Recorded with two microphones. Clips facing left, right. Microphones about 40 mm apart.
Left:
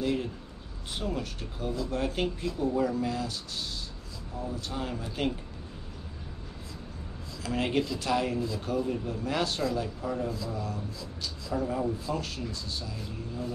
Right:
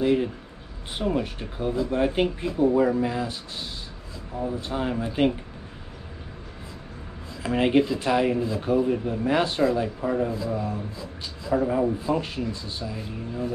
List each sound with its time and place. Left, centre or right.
0.0 s speech: right
7.4 s speech: right